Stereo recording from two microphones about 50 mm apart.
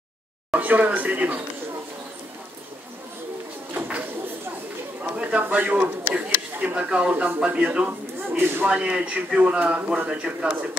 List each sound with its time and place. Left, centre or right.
0.5 s speech: right
3.7 s a sound: right
5.6 s a man's voice: right
8.4 s speech: right
8.6 s a man's voice: right